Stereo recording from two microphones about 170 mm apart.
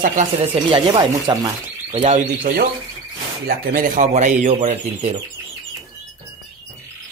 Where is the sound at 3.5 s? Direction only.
60° right (ahead or behind); by 4.8 s 40° right (ahead or behind).